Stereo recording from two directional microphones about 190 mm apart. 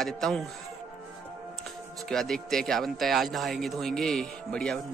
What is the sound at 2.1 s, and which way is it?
Speech, centre (ahead or behind).